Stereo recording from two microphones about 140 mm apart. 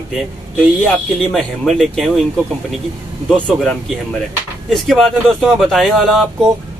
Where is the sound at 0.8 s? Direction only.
5° left (ahead or behind).